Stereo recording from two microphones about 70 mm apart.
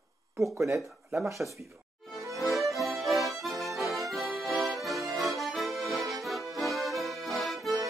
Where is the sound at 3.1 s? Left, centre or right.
Right.